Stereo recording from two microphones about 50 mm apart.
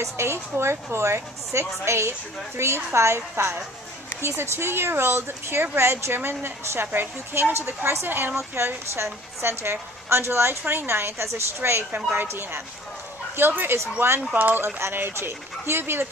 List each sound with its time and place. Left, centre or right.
0.0 s a woman's voice: right
6.1 s speech: right
7.5 s a woman's voice: right
8.1 s speech: right
8.6 s a woman's voice: right
10.6 s a woman's voice: right
12.1 s speech: right